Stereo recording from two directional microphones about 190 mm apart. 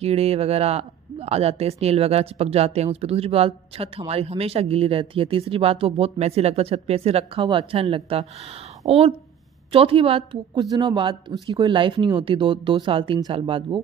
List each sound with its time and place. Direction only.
0.0 s speech: 30° right (ahead or behind)